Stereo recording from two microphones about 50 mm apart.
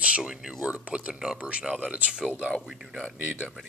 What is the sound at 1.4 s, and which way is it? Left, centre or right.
Speech, right.